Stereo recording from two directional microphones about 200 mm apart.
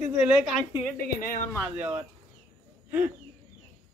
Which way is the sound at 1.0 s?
45° left (ahead or behind).